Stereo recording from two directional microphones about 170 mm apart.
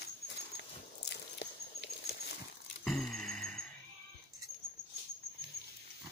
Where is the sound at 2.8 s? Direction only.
Centre (ahead or behind).